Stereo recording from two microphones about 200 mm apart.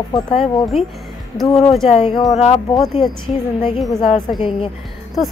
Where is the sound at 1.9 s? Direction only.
30° left (ahead or behind).